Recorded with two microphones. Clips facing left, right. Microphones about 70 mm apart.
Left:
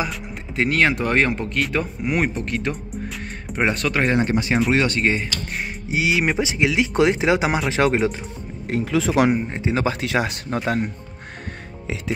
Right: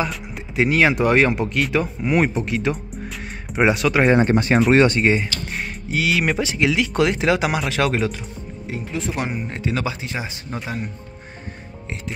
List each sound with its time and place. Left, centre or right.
0.0 s speech: centre
4.1 s speech: right
5.0 s speech: centre
5.9 s speech: centre
8.6 s speech: left
9.5 s speech: left
9.9 s speech: left